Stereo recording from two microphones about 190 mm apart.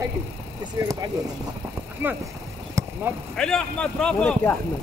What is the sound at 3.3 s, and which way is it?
A man's voice, 5° left (ahead or behind).